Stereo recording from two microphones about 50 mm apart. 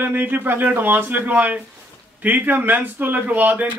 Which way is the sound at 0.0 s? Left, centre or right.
Right.